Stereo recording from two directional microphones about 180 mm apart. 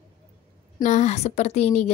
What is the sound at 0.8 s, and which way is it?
A woman's voice, 40° left (ahead or behind).